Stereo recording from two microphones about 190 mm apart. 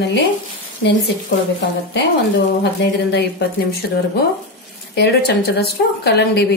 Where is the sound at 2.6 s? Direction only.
60° left (ahead or behind).